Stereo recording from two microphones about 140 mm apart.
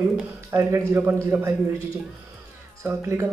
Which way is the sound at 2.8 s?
15° right (ahead or behind).